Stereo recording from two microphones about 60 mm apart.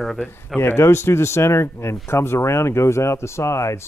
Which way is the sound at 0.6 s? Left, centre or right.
Left.